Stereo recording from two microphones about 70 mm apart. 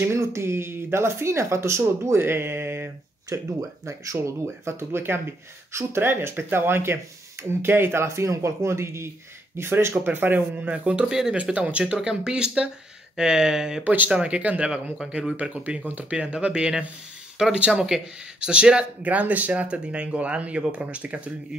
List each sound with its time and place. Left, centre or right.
0.0 s speech: right
3.3 s speech: right; by 11.3 s centre
11.3 s speech: centre
13.8 s speech: right